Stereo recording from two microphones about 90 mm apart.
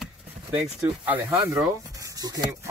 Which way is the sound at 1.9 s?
35° right (ahead or behind).